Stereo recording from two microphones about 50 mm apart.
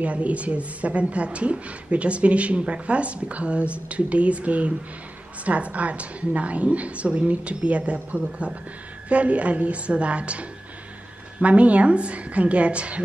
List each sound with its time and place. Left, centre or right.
0.0 s a woman's voice: right